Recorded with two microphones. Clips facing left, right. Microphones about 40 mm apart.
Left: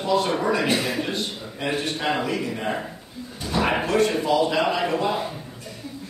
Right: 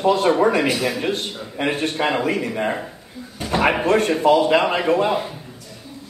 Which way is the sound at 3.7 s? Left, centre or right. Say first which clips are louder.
Right 3 dB; right.